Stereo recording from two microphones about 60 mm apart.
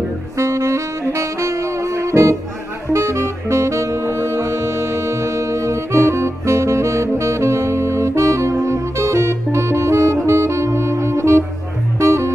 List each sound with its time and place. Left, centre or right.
0.4 s saxophone: right
12.0 s music: right